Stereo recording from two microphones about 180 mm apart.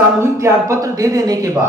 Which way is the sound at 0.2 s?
15° right (ahead or behind).